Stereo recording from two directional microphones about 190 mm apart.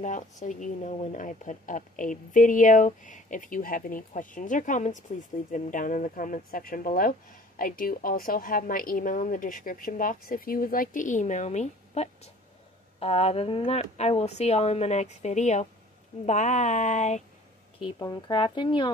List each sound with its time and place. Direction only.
0.0 s speech: 40° left (ahead or behind)
17.7 s speech: 20° left (ahead or behind)